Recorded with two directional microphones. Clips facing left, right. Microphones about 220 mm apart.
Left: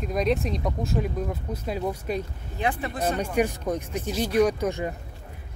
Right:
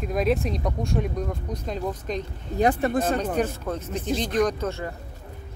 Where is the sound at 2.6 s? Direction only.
45° right (ahead or behind).